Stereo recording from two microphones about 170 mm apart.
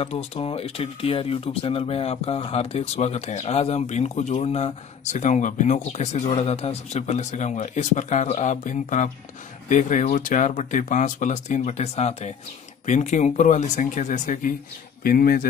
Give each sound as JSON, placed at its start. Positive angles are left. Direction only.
{"t": 0.0, "sound": "speech", "side_deg": 35}